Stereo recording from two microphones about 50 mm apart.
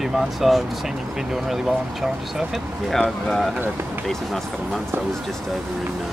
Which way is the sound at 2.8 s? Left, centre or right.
Centre.